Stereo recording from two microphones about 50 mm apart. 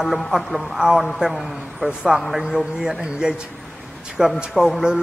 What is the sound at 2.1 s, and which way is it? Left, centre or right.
Speech, right.